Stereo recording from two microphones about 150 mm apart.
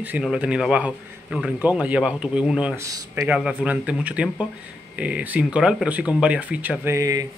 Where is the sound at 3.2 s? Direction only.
5° right (ahead or behind).